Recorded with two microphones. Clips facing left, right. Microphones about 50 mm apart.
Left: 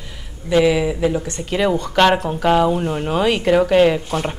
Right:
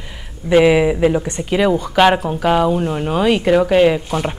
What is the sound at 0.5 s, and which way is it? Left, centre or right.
Speech, right.